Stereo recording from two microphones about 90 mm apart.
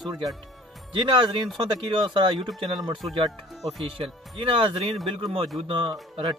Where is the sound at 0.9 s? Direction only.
60° right (ahead or behind).